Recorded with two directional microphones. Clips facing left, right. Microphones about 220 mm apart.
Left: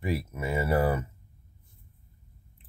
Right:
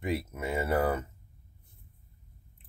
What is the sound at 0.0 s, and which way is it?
Speech, 5° left (ahead or behind).